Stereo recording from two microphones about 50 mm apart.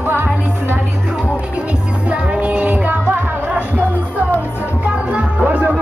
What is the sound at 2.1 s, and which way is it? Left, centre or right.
Music, right.